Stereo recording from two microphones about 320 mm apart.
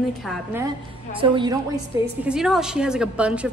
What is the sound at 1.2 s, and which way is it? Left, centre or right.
Speech, centre.